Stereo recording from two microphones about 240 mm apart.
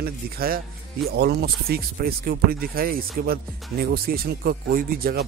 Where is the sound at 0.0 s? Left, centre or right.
Right.